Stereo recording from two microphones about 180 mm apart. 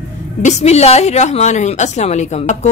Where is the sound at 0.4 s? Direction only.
40° left (ahead or behind).